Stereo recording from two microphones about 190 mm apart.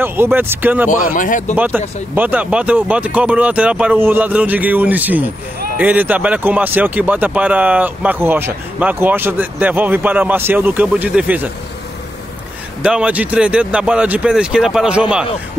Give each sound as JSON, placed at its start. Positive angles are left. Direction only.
{"t": 0.0, "sound": "speech", "side_deg": -10}
{"t": 1.1, "sound": "speech", "side_deg": 45}
{"t": 2.1, "sound": "speech", "side_deg": -10}
{"t": 12.8, "sound": "speech", "side_deg": -5}